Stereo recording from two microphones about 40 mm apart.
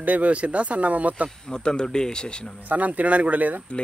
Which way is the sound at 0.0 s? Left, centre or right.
Right.